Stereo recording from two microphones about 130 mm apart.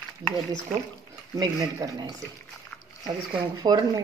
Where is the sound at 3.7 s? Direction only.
30° right (ahead or behind).